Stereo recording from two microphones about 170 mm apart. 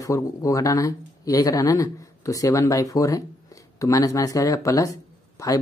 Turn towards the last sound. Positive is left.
turn(degrees=20)  # may be behind; listen again after turning